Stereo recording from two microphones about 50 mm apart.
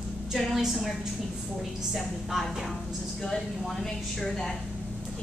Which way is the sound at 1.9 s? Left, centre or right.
Centre.